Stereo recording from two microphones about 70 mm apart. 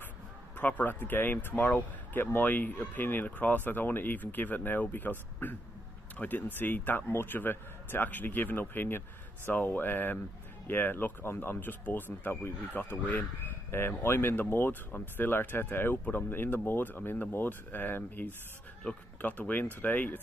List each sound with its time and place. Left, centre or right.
0.6 s speech: left